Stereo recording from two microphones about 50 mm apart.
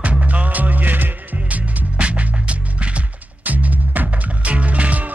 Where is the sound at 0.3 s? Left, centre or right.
Right.